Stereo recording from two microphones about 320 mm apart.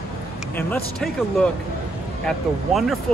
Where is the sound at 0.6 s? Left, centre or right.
Centre.